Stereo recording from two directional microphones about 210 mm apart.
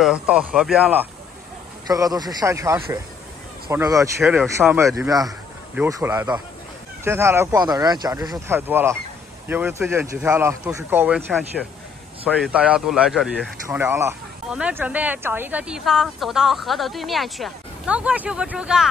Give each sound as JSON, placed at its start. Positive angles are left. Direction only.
{"t": 0.0, "sound": "speech", "side_deg": -5}
{"t": 1.9, "sound": "speech", "side_deg": -15}
{"t": 4.2, "sound": "speech", "side_deg": 0}
{"t": 4.6, "sound": "speech", "side_deg": -15}
{"t": 12.3, "sound": "speech", "side_deg": -5}